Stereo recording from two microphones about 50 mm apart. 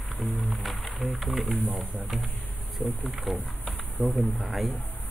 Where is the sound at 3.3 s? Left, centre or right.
Centre.